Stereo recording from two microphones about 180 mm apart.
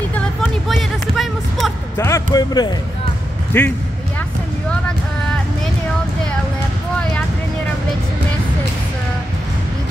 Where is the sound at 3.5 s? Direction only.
10° left (ahead or behind).